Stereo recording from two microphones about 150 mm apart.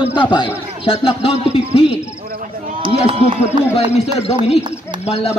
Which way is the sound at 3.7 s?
40° left (ahead or behind).